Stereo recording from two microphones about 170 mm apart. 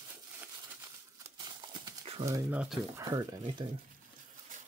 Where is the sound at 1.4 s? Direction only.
20° right (ahead or behind).